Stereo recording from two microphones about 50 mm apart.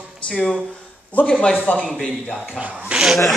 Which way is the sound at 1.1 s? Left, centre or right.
Left.